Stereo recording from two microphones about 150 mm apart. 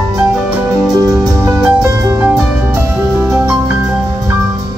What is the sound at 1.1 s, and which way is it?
Music, 20° right (ahead or behind).